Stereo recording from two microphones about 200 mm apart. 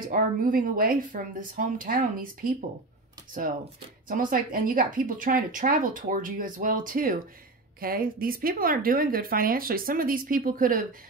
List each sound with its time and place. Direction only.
0.0 s speech: 45° right (ahead or behind)
4.1 s speech: 45° right (ahead or behind)